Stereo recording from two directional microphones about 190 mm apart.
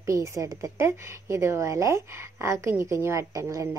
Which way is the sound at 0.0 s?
15° right (ahead or behind).